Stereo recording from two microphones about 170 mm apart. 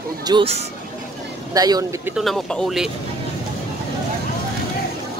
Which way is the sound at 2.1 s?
Centre (ahead or behind).